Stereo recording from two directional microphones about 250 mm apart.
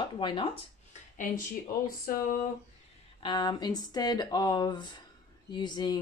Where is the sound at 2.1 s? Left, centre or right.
Left.